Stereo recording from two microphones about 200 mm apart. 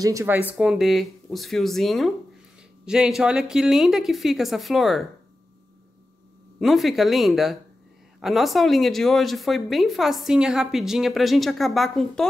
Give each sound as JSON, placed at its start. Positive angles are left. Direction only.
{"t": 0.0, "sound": "speech", "side_deg": -15}
{"t": 6.6, "sound": "speech", "side_deg": 0}